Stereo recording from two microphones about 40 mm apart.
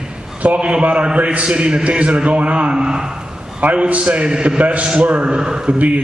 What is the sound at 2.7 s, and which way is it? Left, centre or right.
Speech, centre.